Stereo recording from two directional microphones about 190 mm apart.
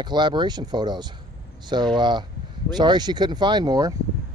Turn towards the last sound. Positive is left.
turn(degrees=-20)  # may be behind; listen again after turning